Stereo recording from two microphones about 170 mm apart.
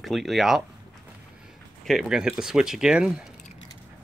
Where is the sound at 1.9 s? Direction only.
Centre (ahead or behind).